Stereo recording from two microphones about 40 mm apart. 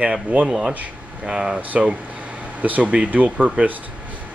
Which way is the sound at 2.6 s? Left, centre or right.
Right.